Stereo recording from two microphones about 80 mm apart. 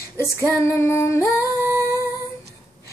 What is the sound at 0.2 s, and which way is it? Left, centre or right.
Female singing, left.